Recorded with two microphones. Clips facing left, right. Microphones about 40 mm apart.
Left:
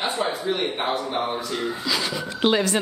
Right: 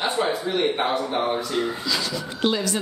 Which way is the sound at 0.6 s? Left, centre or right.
Centre.